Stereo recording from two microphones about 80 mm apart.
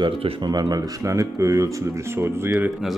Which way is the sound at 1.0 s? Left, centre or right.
Right.